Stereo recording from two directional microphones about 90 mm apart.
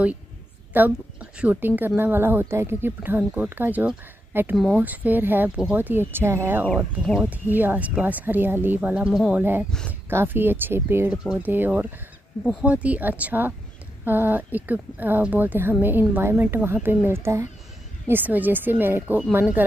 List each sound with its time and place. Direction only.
0.7 s a woman's voice: 15° right (ahead or behind)